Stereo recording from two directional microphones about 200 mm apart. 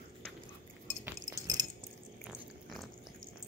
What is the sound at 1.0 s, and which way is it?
Chink, 15° right (ahead or behind).